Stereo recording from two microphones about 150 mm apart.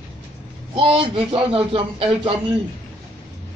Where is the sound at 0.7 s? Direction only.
35° right (ahead or behind).